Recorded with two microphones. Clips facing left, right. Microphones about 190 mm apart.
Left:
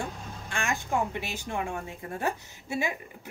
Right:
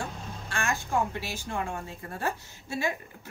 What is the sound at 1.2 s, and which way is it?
A woman's voice, 20° left (ahead or behind).